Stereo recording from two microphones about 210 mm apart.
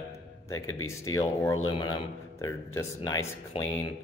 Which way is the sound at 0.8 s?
15° left (ahead or behind).